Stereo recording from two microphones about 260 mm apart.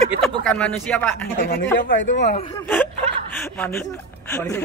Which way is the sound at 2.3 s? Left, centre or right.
Centre.